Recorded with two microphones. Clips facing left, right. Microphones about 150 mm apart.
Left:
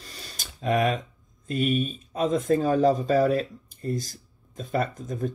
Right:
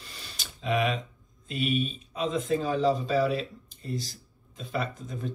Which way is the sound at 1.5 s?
45° left (ahead or behind).